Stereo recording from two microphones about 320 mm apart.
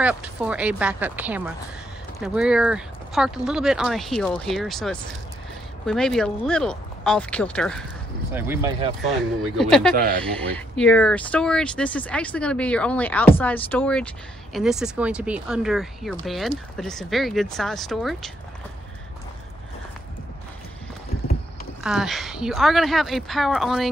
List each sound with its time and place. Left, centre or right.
0.0 s speech: centre
9.9 s speech: right
10.2 s speech: centre
21.8 s speech: centre